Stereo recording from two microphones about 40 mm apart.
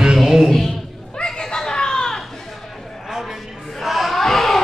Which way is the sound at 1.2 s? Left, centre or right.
Centre.